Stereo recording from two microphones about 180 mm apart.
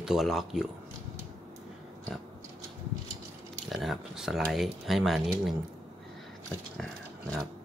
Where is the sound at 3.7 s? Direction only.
Centre (ahead or behind).